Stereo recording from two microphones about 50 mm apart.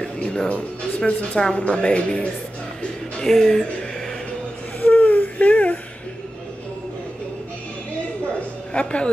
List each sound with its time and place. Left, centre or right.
0.0 s speech: centre
3.3 s speech: centre
4.8 s baby cry: left
8.7 s speech: left